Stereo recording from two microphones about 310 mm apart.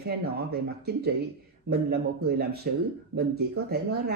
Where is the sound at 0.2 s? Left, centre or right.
Right.